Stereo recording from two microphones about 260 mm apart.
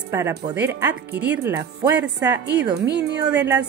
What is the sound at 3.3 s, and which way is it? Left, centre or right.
Speech, centre.